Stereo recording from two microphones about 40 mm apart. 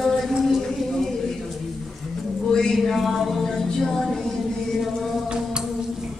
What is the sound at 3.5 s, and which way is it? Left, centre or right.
Speech, centre.